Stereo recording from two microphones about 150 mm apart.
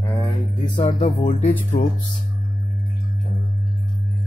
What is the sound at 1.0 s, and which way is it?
Speech, 55° left (ahead or behind).